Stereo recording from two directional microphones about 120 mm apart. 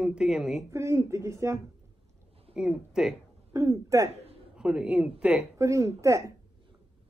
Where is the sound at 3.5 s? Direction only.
25° right (ahead or behind).